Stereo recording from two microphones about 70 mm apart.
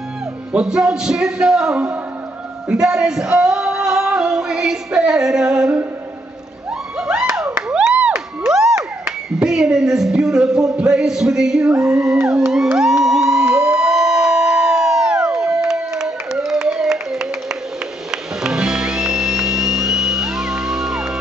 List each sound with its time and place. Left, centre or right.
0.5 s a man's voice: centre
2.7 s a sound: centre
7.7 s a sound: centre
9.0 s speech: centre
11.7 s music: right
12.0 s a man's voice: centre
12.7 s music: centre
13.5 s music: right
13.7 s crowd: centre
18.1 s music: centre